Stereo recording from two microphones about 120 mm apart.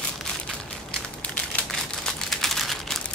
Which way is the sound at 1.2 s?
10° left (ahead or behind).